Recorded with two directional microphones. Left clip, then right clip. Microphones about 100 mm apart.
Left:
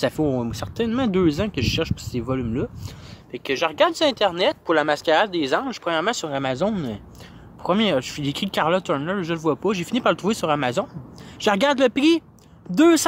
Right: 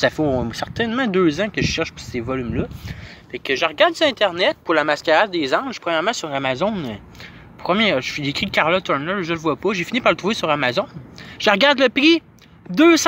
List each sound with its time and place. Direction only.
0.0 s speech: 45° left (ahead or behind); by 2.7 s 70° left (ahead or behind)
3.3 s speech: 45° left (ahead or behind)